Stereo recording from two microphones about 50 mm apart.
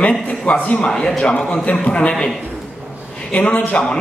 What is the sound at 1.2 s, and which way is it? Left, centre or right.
A man's voice, centre.